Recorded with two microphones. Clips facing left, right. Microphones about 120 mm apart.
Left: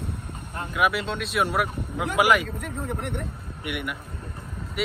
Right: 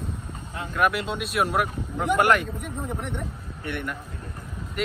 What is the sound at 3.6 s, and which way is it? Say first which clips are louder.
Speech: even; 10° left (ahead or behind).